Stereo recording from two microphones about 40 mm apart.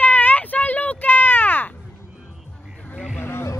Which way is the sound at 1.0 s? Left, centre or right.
Left.